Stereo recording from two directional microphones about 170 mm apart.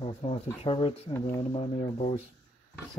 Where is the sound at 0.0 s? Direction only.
35° left (ahead or behind).